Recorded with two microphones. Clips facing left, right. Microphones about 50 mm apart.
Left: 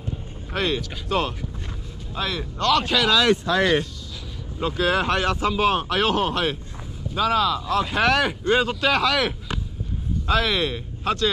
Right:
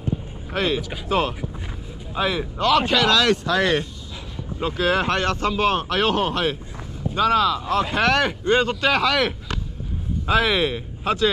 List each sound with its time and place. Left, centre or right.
0.5 s speech: centre
3.4 s speech: right
4.6 s speech: centre